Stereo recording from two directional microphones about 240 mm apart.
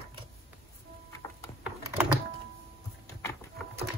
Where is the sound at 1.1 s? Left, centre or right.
Centre.